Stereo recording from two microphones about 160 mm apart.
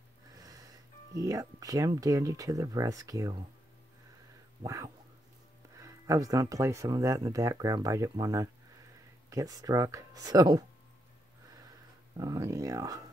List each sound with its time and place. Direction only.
0.4 s a sound: 25° right (ahead or behind)
1.2 s speech: 20° right (ahead or behind)
4.6 s speech: 20° right (ahead or behind)
12.2 s speech: 20° right (ahead or behind)